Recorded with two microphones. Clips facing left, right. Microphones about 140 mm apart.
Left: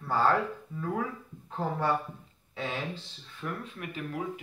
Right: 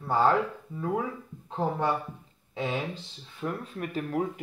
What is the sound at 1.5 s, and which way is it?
Speech, 20° right (ahead or behind).